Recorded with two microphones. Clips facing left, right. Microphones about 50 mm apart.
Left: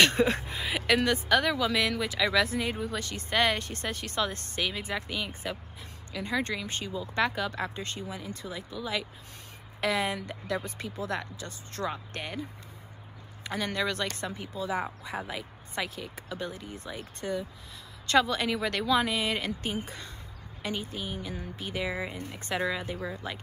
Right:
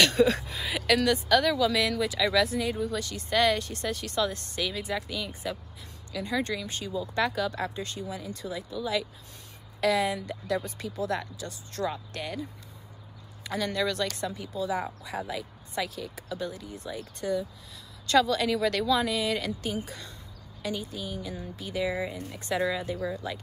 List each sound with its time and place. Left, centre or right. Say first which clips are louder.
0.0 s a woman's voice: right 1 dB; left
9.8 s speech: right 3 dB; left